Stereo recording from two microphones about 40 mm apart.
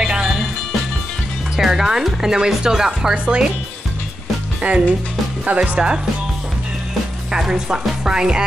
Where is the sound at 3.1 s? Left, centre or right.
Right.